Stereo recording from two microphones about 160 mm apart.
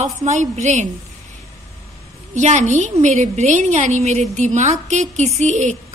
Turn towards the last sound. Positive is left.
turn(degrees=-50)  # may be behind; listen again after turning